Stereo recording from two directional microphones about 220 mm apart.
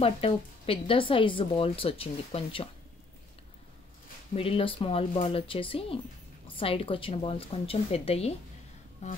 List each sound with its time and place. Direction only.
0.0 s speech: 25° left (ahead or behind)
4.4 s speech: 25° left (ahead or behind)
9.0 s music: 30° left (ahead or behind)